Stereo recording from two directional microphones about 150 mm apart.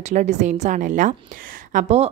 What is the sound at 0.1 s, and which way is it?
A woman's voice, 55° right (ahead or behind).